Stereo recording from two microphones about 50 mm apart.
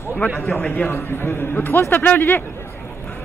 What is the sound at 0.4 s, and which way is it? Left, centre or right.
A man's voice, left.